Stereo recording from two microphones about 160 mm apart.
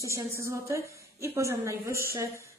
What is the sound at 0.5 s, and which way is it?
A man's voice, 20° right (ahead or behind).